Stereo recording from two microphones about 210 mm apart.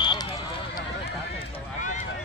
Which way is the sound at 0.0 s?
20° left (ahead or behind).